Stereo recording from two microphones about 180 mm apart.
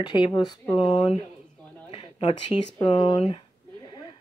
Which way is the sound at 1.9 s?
30° left (ahead or behind).